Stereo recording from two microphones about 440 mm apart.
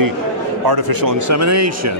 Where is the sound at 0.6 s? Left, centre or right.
Right.